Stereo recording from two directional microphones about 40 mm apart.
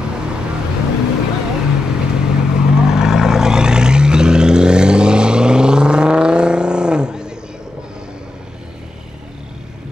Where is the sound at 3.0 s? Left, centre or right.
Centre.